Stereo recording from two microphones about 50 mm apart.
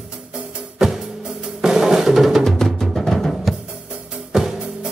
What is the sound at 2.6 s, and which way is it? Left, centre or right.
Music, centre.